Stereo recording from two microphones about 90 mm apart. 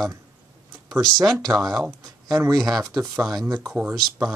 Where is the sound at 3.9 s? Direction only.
Centre (ahead or behind).